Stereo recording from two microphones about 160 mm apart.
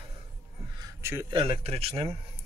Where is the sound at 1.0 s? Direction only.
15° right (ahead or behind).